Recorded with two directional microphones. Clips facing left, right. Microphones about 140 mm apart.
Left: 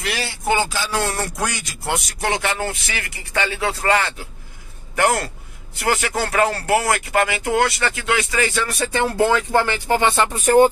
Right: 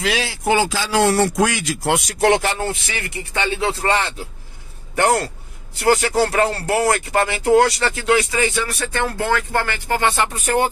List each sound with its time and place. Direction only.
0.0 s speech: 90° right
2.4 s speech: 30° right (ahead or behind)
8.7 s speech: 20° left (ahead or behind)